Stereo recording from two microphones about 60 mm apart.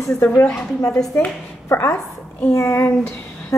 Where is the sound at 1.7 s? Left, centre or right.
Left.